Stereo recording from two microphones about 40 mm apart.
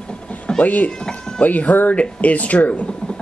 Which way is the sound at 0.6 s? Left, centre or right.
Left.